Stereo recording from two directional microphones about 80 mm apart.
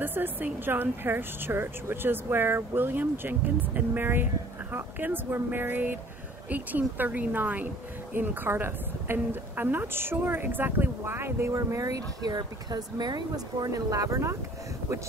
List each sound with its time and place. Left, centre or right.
0.0 s speech: right
11.5 s speech: right